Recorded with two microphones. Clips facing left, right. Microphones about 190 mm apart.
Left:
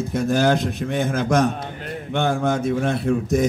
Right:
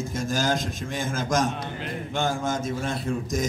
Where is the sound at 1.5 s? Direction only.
45° left (ahead or behind).